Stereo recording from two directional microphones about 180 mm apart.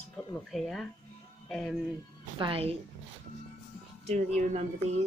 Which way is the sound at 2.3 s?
30° right (ahead or behind).